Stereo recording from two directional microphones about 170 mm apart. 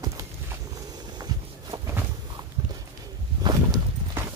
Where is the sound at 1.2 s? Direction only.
20° right (ahead or behind).